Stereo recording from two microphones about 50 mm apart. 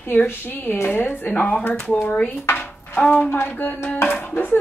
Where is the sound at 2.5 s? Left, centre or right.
Left.